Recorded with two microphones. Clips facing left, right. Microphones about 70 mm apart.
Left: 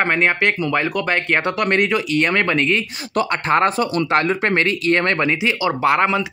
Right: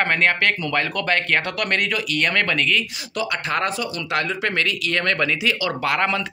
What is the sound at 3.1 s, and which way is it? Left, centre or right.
Speech, left.